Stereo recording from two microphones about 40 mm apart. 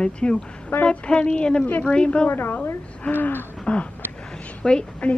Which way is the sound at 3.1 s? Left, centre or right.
Left.